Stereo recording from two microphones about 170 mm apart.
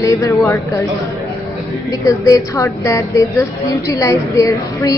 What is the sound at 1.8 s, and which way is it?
A woman's voice, 20° left (ahead or behind).